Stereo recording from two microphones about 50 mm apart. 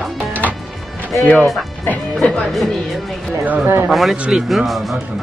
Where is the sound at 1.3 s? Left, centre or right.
Centre.